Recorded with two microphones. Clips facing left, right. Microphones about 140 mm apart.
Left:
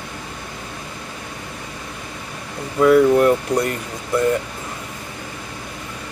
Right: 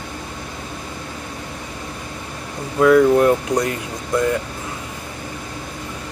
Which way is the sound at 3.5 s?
15° right (ahead or behind).